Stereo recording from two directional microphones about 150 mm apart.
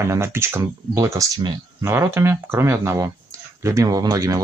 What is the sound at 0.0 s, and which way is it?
Speech, 20° right (ahead or behind).